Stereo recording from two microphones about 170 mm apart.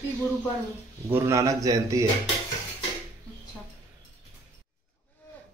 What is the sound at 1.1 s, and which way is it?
Speech, 15° right (ahead or behind).